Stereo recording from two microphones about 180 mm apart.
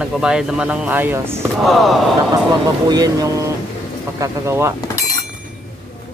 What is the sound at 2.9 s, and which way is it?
Speech, 20° right (ahead or behind).